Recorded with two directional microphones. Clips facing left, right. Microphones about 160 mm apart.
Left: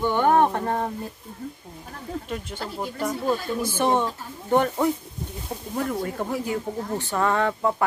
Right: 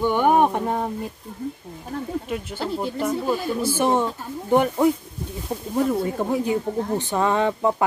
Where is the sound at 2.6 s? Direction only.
25° right (ahead or behind).